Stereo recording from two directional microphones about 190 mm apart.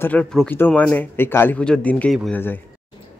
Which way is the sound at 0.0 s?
10° left (ahead or behind).